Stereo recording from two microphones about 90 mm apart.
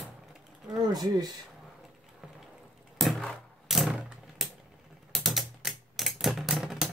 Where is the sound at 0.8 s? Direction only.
50° right (ahead or behind).